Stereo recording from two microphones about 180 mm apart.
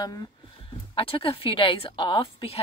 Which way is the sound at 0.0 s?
20° left (ahead or behind).